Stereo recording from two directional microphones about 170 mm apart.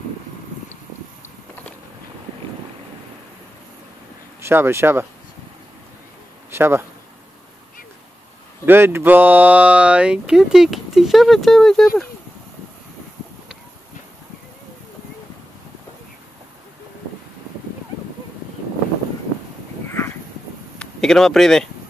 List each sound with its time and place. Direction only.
4.4 s speech: 15° right (ahead or behind)
6.5 s speech: 15° right (ahead or behind)
8.6 s speech: 15° right (ahead or behind); by 12.1 s 5° left (ahead or behind)
19.9 s a sound: 15° left (ahead or behind)
20.8 s speech: 5° left (ahead or behind)